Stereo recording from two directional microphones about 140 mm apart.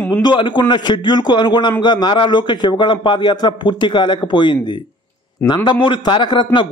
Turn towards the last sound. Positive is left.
turn(degrees=35)  # may be behind; listen again after turning